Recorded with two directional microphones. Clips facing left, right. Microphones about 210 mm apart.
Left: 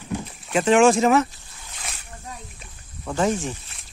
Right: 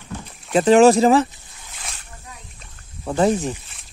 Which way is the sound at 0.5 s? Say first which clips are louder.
Right 4 dB; 35° right (ahead or behind).